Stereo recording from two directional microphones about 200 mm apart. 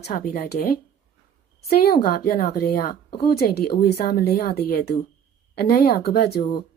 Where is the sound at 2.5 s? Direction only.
50° left (ahead or behind).